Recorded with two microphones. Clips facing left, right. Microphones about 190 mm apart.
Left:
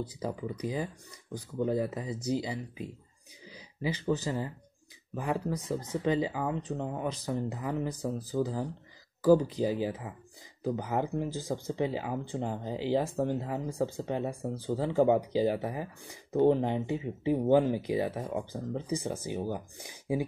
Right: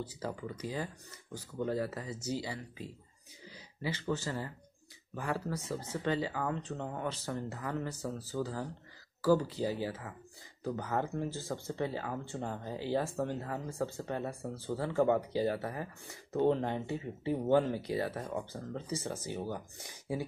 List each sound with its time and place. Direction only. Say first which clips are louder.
0.0 s speech: left 4 dB; 15° left (ahead or behind)
3.4 s a sound: left 4 dB; 15° left (ahead or behind)
4.1 s speech: left 5 dB; 15° left (ahead or behind)